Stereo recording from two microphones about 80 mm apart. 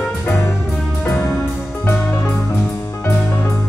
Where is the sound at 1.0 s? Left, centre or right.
Left.